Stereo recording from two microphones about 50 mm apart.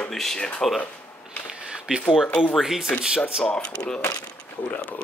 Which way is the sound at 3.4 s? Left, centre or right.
Centre.